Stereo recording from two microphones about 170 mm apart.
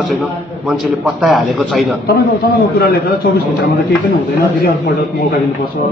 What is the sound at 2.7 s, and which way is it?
Speech, 65° left (ahead or behind).